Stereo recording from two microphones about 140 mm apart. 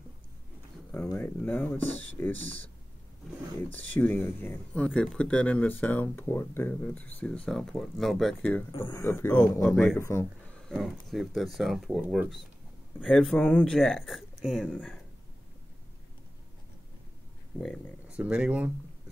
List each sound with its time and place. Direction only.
1.1 s speech: 15° left (ahead or behind)
3.7 s speech: 10° left (ahead or behind)
8.8 s speech: 20° left (ahead or behind)
9.7 s speech: 5° left (ahead or behind)
9.9 s speech: 20° left (ahead or behind)
10.7 s speech: centre (ahead or behind)
13.7 s speech: centre (ahead or behind)
18.1 s speech: 10° right (ahead or behind)